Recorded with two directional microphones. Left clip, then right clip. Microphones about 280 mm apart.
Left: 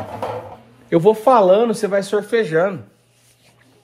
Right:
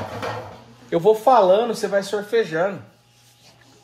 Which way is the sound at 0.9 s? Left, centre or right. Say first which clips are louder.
Left 2 dB; left.